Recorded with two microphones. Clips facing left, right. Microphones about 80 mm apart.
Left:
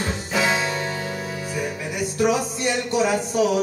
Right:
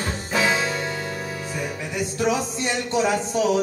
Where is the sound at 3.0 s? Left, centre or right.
Centre.